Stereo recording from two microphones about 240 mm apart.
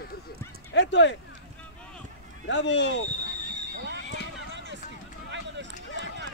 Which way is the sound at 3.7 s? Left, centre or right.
Right.